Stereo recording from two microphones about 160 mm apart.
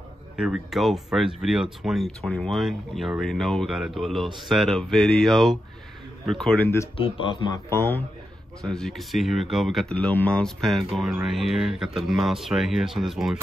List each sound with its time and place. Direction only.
0.4 s speech: 5° right (ahead or behind)
7.0 s speech: 30° left (ahead or behind)
7.7 s speech: 15° left (ahead or behind)
8.6 s speech: centre (ahead or behind)